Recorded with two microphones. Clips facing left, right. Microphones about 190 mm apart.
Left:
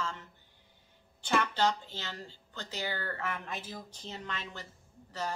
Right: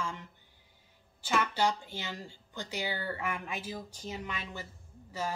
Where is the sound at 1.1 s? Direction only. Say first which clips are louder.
Even; 5° right (ahead or behind).